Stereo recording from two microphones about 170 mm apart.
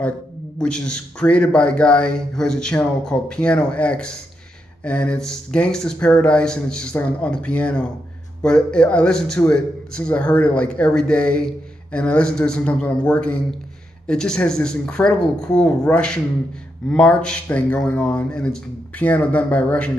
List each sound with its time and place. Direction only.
0.6 s a man's voice: 5° left (ahead or behind)